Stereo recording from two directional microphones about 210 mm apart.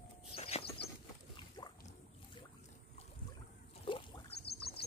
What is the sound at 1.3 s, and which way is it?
Boat, 20° left (ahead or behind).